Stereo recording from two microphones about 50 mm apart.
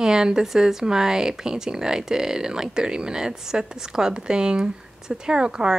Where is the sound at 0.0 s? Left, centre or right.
Centre.